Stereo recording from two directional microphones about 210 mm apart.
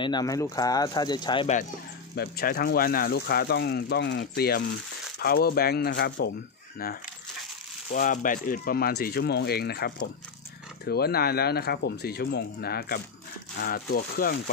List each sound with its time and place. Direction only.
0.0 s speech: 20° left (ahead or behind)
2.1 s speech: 50° left (ahead or behind)
7.9 s speech: 40° left (ahead or behind)